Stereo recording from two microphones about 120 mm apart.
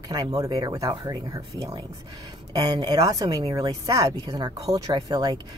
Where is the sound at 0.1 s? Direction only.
30° right (ahead or behind).